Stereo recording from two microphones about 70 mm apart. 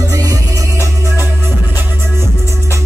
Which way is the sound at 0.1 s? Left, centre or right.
Right.